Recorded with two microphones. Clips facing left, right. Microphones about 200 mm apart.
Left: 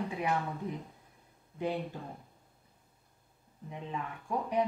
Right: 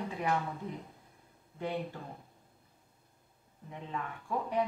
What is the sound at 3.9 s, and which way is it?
Speech, 15° left (ahead or behind).